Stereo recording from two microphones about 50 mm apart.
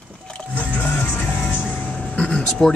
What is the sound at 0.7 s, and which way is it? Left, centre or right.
Music, left.